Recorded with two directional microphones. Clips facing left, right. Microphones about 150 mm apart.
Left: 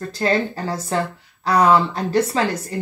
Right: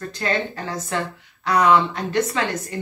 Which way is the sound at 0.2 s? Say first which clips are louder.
Left 4 dB; 35° left (ahead or behind).